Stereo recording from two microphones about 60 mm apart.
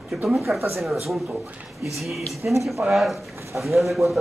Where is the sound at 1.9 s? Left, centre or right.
Centre.